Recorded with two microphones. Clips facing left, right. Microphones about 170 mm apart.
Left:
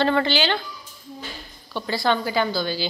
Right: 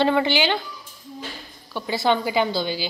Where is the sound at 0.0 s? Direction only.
15° right (ahead or behind).